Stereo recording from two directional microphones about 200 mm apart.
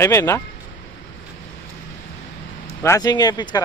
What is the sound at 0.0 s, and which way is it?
Speech, 15° left (ahead or behind).